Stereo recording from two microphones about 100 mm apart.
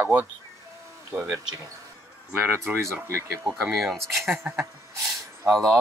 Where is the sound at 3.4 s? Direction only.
Centre (ahead or behind).